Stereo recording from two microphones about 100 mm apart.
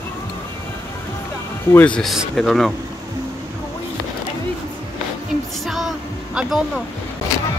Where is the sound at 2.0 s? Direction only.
Centre (ahead or behind).